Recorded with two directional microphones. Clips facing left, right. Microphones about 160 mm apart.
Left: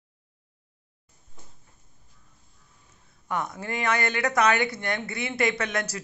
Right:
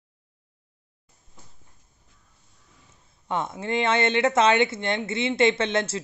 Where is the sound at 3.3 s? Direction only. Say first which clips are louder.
Right 3 dB; 25° right (ahead or behind).